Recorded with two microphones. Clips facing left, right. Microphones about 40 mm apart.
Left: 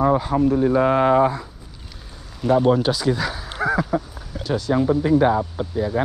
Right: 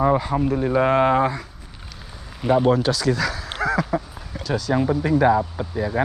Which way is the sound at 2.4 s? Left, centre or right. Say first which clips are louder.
Left 1 dB; centre.